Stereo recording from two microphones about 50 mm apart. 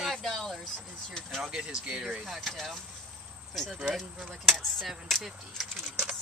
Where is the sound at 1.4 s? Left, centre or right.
Centre.